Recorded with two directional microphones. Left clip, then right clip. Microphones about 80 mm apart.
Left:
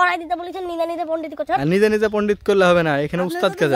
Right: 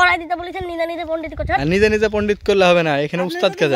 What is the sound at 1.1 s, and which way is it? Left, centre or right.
Speech, centre.